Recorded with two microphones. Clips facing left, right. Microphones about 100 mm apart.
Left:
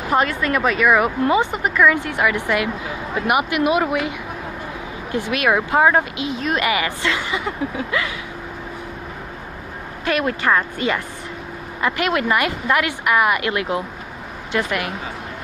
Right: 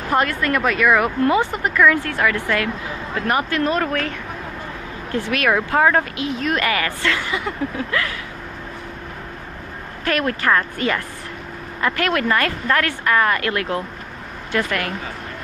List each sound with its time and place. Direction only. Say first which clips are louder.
0.1 s speech: even; 10° left (ahead or behind)
5.1 s speech: even; 15° left (ahead or behind)
10.0 s speech: even; 15° left (ahead or behind)